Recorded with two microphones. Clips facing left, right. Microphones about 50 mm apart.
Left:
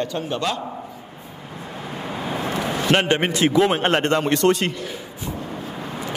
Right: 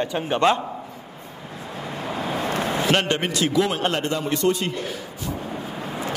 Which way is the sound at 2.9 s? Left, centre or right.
Left.